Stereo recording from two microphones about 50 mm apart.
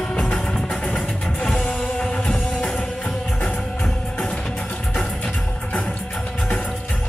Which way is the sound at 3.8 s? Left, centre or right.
Centre.